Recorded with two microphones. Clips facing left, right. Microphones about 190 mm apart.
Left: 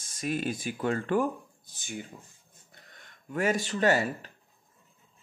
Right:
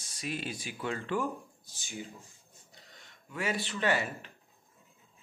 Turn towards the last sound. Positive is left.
turn(degrees=40)  # may be behind; listen again after turning